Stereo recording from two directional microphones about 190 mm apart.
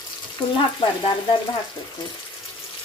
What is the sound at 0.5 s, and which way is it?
Speech, 25° left (ahead or behind).